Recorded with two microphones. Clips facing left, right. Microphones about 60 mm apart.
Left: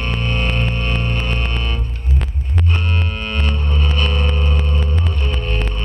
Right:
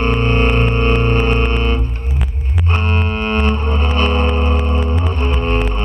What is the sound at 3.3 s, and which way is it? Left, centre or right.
Music, right.